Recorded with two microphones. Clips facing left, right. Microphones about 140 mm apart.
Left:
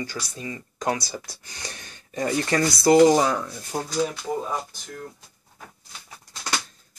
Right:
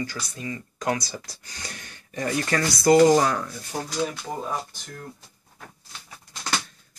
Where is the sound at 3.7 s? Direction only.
30° left (ahead or behind).